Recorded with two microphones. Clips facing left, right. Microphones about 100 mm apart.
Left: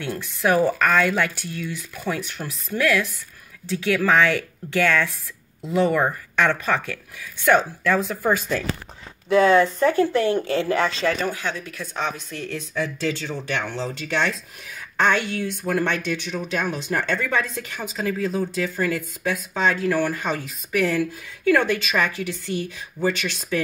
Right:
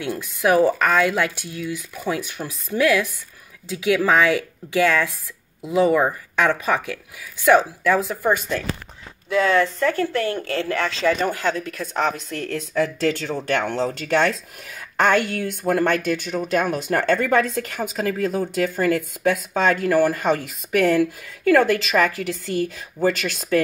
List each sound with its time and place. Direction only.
0.0 s speech: 15° right (ahead or behind)
9.3 s speech: 20° left (ahead or behind)
11.8 s speech: 45° right (ahead or behind)
19.9 s speech: 45° right (ahead or behind)